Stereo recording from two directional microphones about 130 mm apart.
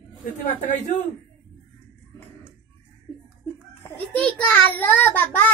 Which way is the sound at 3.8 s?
10° left (ahead or behind).